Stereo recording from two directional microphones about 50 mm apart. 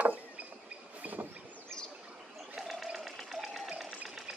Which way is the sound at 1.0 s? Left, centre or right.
Right.